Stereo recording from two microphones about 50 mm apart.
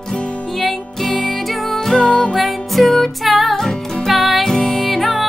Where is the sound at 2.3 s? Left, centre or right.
Centre.